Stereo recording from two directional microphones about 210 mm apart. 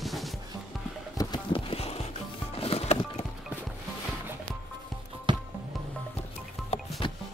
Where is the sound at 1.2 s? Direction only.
20° left (ahead or behind).